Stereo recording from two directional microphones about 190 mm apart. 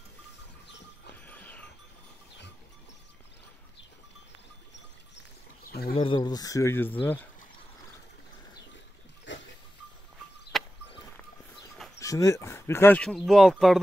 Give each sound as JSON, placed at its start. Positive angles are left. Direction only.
{"t": 1.1, "sound": "music", "side_deg": 10}
{"t": 5.7, "sound": "a sound", "side_deg": 55}
{"t": 5.9, "sound": "speech", "side_deg": 25}
{"t": 9.3, "sound": "goat", "side_deg": 75}
{"t": 10.5, "sound": "a sound", "side_deg": 0}
{"t": 12.0, "sound": "speech", "side_deg": 15}